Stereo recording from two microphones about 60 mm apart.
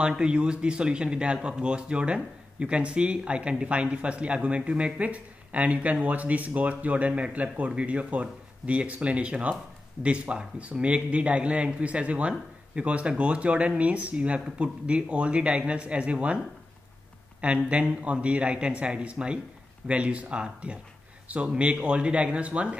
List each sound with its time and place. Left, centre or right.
0.0 s speech: centre